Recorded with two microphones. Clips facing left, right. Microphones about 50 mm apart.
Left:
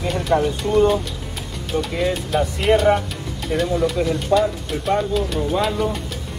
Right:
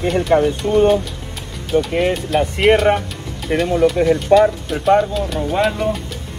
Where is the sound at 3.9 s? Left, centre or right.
Right.